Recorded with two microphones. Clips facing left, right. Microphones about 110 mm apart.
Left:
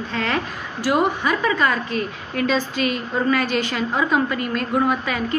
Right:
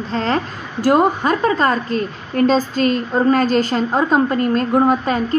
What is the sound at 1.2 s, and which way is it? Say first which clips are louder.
A woman's voice: right 4 dB; 40° right (ahead or behind).